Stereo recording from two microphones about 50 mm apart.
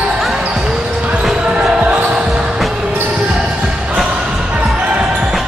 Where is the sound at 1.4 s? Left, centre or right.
Right.